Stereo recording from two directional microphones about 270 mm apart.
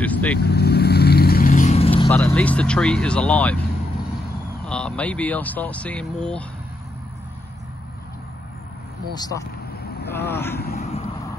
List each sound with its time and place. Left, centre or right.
0.0 s vehicle: centre
0.4 s vehicle: left
2.0 s speech: centre
4.6 s speech: centre
9.1 s speech: centre
10.6 s speech: left